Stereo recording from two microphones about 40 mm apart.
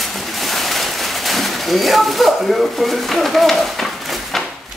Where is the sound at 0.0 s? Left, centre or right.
Centre.